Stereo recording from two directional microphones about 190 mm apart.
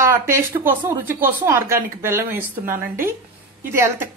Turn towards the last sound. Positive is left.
turn(degrees=-15)  # may be behind; listen again after turning